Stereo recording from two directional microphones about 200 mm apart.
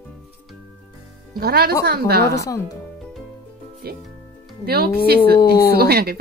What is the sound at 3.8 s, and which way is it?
Speech, 50° right (ahead or behind).